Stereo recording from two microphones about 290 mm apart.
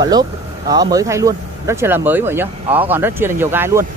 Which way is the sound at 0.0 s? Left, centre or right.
Centre.